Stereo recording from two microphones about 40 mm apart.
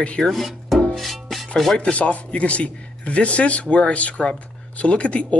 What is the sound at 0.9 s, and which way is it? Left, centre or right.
Music, centre.